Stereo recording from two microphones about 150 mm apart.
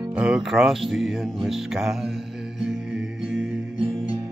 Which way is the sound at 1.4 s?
Centre (ahead or behind).